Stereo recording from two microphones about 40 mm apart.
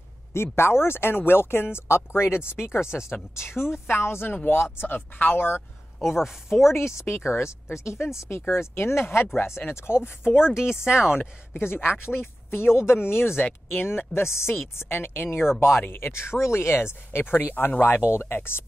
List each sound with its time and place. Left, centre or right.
0.3 s speech: left
2.8 s speech: centre
3.1 s speech: left
4.7 s speech: left
5.9 s speech: centre
6.7 s speech: left
9.4 s speech: left
10.2 s speech: centre
10.6 s speech: left
10.9 s speech: centre
11.5 s speech: left
14.8 s speech: left
15.9 s speech: left
18.1 s speech: left